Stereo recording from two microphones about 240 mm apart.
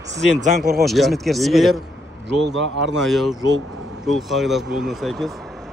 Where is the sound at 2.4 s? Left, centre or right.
Right.